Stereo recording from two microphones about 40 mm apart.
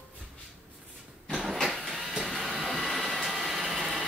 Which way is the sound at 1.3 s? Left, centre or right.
Centre.